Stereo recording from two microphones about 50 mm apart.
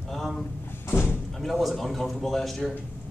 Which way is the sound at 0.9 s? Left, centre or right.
Left.